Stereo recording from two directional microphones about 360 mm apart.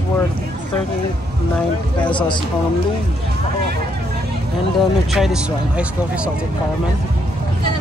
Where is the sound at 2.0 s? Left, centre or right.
Centre.